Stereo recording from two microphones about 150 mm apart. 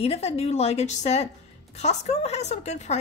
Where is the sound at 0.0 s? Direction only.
45° left (ahead or behind).